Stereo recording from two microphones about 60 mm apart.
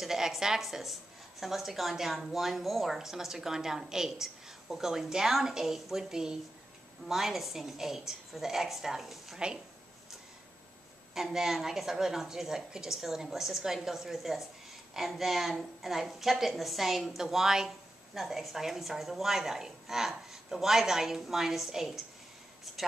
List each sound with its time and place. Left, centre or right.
0.0 s a woman's voice: centre
11.1 s a woman's voice: centre